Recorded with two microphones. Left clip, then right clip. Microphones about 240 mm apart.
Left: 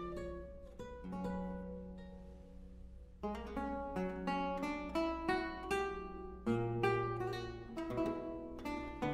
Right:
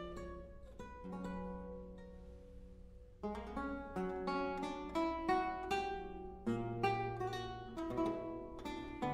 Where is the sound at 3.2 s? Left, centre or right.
Left.